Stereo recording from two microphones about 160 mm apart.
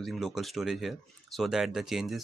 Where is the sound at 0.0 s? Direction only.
Centre (ahead or behind).